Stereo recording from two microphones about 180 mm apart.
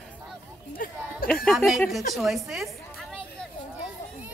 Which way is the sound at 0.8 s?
50° left (ahead or behind).